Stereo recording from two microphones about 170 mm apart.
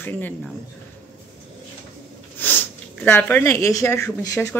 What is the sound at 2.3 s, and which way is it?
Speech, 10° left (ahead or behind).